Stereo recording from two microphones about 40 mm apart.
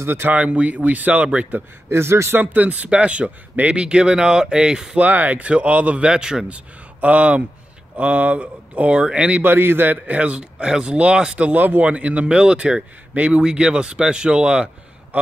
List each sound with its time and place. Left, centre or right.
0.0 s speech: right
0.3 s speech: right
1.9 s speech: right
2.4 s speech: right
4.9 s speech: right
6.0 s speech: centre
6.5 s speech: right
9.4 s a man's voice: right
10.0 s speech: right
11.3 s speech: right
11.9 s speech: right
12.3 s speech: right